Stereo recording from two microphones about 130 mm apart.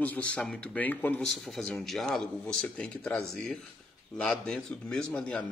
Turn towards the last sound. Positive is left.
turn(degrees=10)  # may be behind; listen again after turning